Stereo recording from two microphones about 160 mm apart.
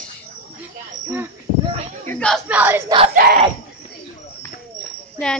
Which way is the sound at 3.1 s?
65° right (ahead or behind).